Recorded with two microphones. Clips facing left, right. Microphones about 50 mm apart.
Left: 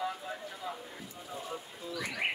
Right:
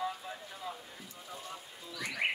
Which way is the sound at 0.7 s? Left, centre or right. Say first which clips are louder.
Left 2 dB; centre.